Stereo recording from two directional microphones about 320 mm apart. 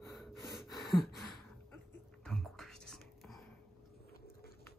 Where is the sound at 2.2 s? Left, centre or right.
Centre.